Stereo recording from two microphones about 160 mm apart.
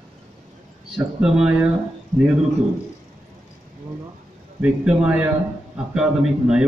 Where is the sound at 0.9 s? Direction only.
5° right (ahead or behind).